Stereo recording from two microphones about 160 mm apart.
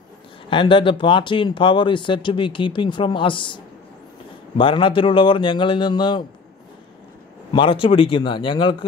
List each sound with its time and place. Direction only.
0.5 s speech: 30° left (ahead or behind)
7.5 s speech: 30° left (ahead or behind)